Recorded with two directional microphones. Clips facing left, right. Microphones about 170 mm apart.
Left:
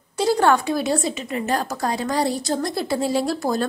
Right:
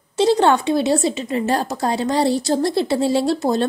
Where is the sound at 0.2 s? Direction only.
25° right (ahead or behind).